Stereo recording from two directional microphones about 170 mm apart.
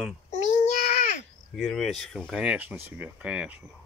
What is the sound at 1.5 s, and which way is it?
Speech, centre (ahead or behind).